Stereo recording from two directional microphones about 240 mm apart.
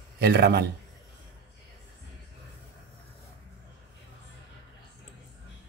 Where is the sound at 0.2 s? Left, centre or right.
Right.